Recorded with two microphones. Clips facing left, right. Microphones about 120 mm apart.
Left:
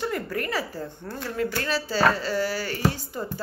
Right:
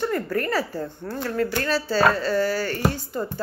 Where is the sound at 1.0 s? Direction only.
45° right (ahead or behind).